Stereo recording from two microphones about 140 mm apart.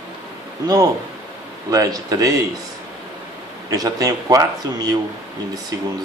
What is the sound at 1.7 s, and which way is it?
Speech, 25° right (ahead or behind).